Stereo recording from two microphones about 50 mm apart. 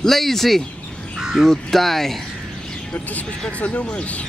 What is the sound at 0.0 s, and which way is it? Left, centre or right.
Speech, centre.